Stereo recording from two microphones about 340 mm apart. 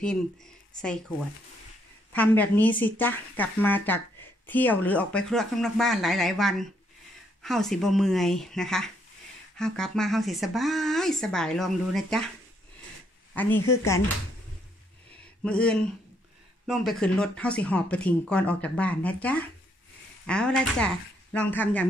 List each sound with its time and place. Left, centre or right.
0.7 s speech: centre
2.1 s speech: centre
13.3 s speech: centre
15.4 s speech: centre